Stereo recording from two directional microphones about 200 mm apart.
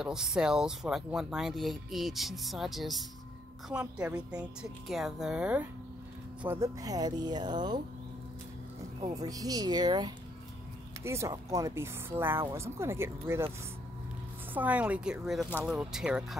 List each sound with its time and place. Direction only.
0.0 s speech: centre (ahead or behind); by 7.8 s 20° right (ahead or behind)
9.1 s speech: 20° right (ahead or behind)
14.5 s speech: 10° right (ahead or behind)